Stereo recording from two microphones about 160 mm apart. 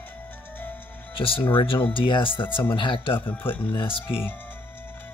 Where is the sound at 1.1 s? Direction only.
35° left (ahead or behind).